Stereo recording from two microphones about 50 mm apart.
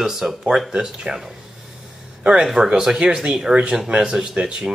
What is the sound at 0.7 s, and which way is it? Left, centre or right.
Speech, centre.